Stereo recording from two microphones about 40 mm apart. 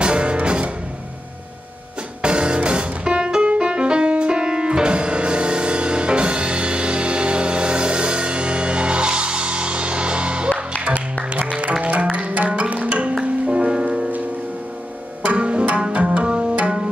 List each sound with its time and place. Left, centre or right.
0.0 s music: right
2.2 s music: right
11.8 s music: right
15.2 s music: right